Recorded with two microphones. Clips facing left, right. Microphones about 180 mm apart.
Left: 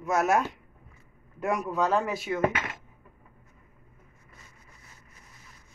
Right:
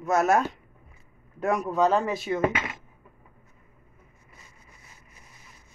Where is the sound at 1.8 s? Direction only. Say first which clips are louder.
Right 4 dB; 25° right (ahead or behind).